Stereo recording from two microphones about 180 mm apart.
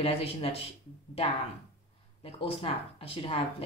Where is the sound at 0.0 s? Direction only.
35° left (ahead or behind).